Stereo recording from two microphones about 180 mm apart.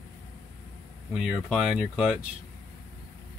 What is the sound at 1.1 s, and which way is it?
Speech, centre (ahead or behind).